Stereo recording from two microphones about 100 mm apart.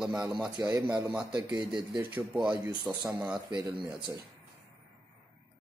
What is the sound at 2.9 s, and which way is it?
Speech, 5° right (ahead or behind).